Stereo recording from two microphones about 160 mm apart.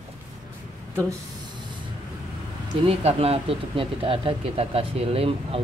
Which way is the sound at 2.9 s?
40° right (ahead or behind).